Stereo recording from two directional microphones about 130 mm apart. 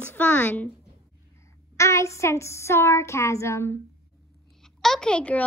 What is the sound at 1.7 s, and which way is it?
A child's voice, 20° left (ahead or behind).